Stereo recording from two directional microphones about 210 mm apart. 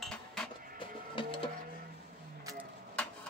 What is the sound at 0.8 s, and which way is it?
Music, 25° left (ahead or behind).